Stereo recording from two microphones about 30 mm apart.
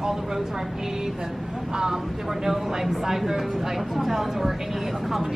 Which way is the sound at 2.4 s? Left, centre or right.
Centre.